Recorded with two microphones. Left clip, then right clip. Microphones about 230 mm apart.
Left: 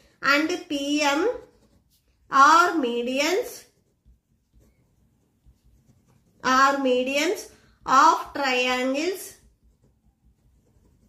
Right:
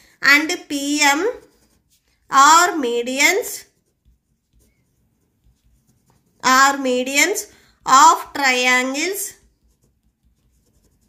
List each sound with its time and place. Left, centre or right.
0.2 s a woman's voice: right
2.2 s a woman's voice: right
6.4 s a woman's voice: right